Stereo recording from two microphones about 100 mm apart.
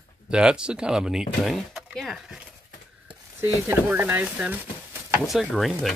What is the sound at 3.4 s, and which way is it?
Speech, 20° right (ahead or behind).